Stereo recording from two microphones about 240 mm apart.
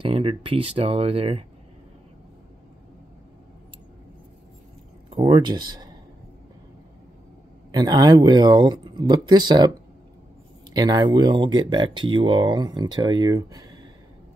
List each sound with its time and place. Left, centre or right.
0.0 s speech: right
5.1 s speech: right
7.7 s speech: centre
10.7 s speech: centre